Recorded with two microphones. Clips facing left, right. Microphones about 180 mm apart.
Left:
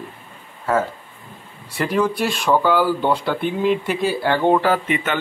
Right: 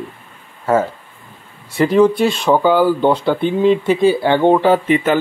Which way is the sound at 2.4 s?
25° right (ahead or behind).